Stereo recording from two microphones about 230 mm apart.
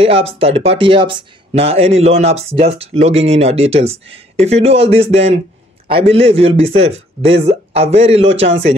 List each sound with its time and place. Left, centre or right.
0.0 s speech: right